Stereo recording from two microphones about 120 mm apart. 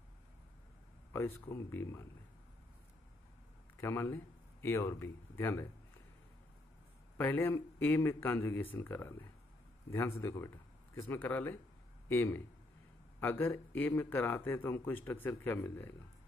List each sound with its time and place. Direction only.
1.1 s speech: 20° left (ahead or behind)
3.8 s speech: 20° left (ahead or behind)
7.2 s a man's voice: 15° left (ahead or behind)